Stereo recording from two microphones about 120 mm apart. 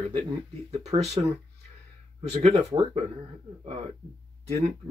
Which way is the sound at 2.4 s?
65° right (ahead or behind).